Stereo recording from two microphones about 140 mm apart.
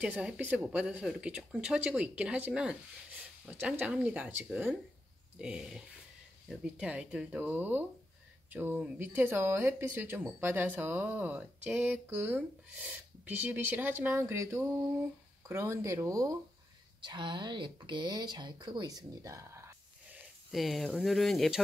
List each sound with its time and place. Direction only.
0.0 s speech: 10° right (ahead or behind)
20.5 s speech: centre (ahead or behind)